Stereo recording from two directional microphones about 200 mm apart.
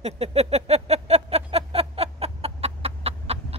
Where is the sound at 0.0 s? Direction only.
30° right (ahead or behind).